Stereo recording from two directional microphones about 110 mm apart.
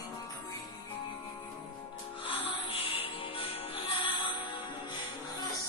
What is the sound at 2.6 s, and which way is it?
Music, 55° left (ahead or behind).